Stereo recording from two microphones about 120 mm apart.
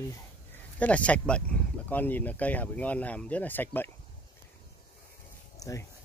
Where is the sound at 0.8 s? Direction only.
10° left (ahead or behind).